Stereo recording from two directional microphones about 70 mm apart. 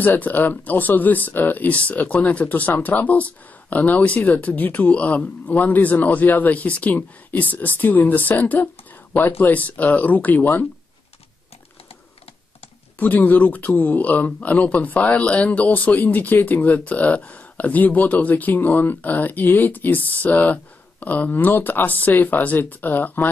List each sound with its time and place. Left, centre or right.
0.0 s speech: left
13.0 s speech: left